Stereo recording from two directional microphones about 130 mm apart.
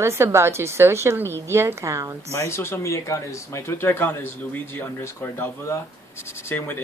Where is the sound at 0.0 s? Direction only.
20° right (ahead or behind).